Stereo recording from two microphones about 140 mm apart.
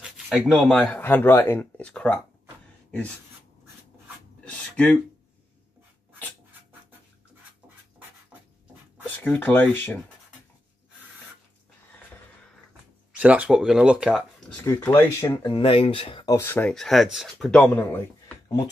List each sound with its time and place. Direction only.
0.0 s speech: centre (ahead or behind)
4.5 s a sound: 10° left (ahead or behind)
9.0 s speech: 10° left (ahead or behind)
13.2 s speech: 10° right (ahead or behind)
14.8 s speech: 20° left (ahead or behind)
15.4 s speech: 35° left (ahead or behind)
16.3 s speech: 15° left (ahead or behind)